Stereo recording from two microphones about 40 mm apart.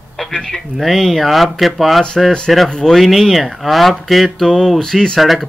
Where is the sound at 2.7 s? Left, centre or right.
Centre.